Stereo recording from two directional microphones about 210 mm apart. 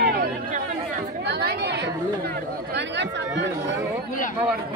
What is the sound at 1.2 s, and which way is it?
Chatter, 50° right (ahead or behind).